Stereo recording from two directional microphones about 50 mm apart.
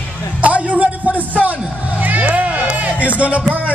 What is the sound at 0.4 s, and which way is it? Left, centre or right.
Music, right.